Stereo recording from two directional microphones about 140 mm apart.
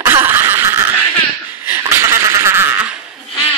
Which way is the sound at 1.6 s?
15° right (ahead or behind).